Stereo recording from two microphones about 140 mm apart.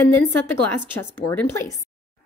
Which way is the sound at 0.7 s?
15° left (ahead or behind).